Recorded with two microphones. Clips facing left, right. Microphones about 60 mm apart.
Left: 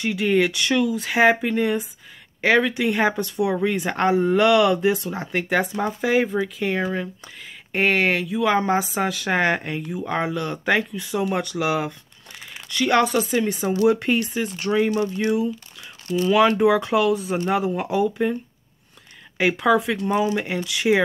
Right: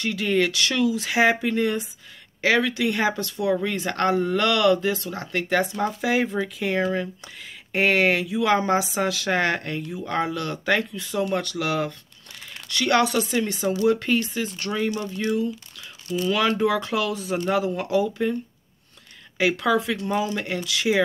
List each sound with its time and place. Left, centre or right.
0.0 s speech: centre
15.0 s speech: left
16.3 s speech: centre